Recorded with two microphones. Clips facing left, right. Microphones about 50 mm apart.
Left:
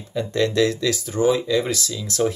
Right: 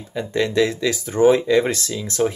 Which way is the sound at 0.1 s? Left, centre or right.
Centre.